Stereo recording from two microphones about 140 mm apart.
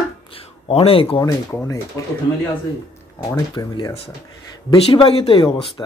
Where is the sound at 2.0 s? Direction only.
20° left (ahead or behind).